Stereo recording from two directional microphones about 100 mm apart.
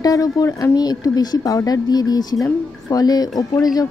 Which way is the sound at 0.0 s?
35° left (ahead or behind).